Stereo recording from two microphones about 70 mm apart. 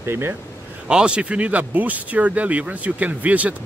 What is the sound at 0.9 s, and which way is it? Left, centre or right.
A man's voice, centre.